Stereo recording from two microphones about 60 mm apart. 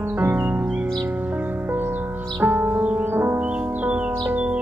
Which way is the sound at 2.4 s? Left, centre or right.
Right.